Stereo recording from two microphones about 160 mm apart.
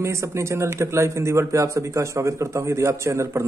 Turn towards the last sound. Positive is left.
turn(degrees=-15)  # may be behind; listen again after turning